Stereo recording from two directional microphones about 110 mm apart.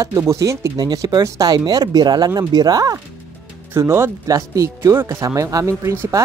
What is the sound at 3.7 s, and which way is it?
Speech, 25° right (ahead or behind).